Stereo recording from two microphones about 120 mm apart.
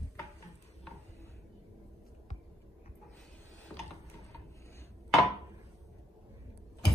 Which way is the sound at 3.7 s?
10° left (ahead or behind).